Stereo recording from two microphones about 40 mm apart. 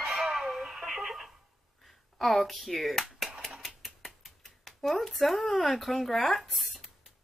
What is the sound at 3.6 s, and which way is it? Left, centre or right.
Typewriter, centre.